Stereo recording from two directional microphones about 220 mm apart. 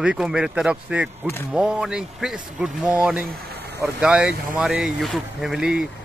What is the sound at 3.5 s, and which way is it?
Vehicle, 45° right (ahead or behind).